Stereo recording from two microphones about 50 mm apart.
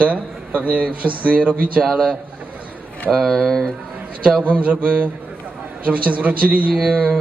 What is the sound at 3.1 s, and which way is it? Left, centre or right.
Speech, centre.